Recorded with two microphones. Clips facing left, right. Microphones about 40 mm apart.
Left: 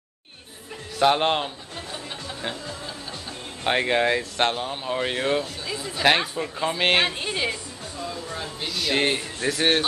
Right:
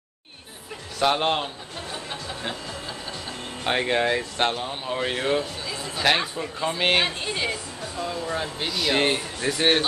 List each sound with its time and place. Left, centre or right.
1.0 s speech: centre
3.6 s speech: centre
8.1 s speech: right
8.6 s a man's voice: centre
8.9 s speech: centre